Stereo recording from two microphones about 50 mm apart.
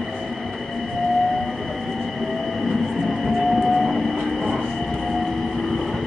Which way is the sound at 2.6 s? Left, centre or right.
Centre.